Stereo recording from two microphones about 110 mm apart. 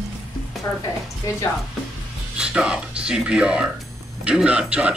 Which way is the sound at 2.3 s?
10° right (ahead or behind).